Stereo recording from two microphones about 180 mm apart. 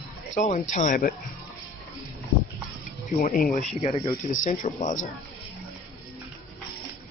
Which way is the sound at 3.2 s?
50° left (ahead or behind).